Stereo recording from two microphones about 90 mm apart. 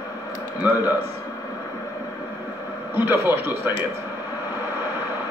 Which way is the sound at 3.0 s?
25° right (ahead or behind).